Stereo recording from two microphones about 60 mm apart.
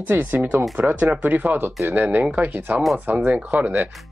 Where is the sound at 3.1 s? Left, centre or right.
Right.